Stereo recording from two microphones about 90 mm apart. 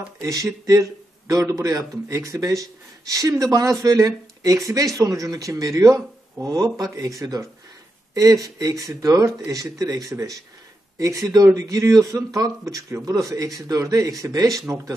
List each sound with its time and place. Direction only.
0.2 s speech: 40° right (ahead or behind)